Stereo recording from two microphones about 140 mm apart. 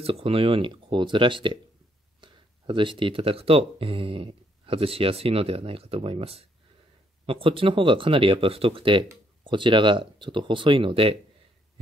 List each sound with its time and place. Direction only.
0.0 s speech: 45° right (ahead or behind)